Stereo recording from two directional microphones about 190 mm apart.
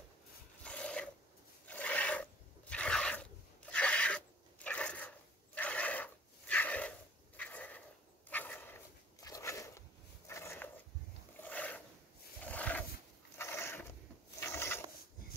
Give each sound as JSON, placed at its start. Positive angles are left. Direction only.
{"t": 0.7, "sound": "filing", "side_deg": 5}
{"t": 7.3, "sound": "a sound", "side_deg": 10}
{"t": 8.3, "sound": "dog", "side_deg": 10}
{"t": 11.3, "sound": "roaring cats", "side_deg": 10}
{"t": 12.4, "sound": "wild animals", "side_deg": 10}
{"t": 13.4, "sound": "a sound", "side_deg": 15}
{"t": 14.4, "sound": "rub", "side_deg": 15}